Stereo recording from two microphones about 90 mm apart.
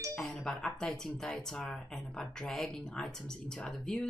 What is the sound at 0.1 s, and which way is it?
Speech, 5° left (ahead or behind).